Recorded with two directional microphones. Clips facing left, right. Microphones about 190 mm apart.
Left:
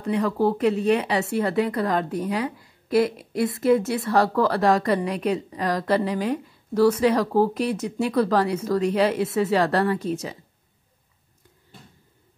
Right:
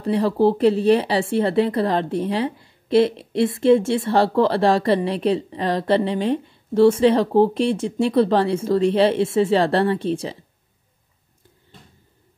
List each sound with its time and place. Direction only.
0.0 s speech: 30° right (ahead or behind)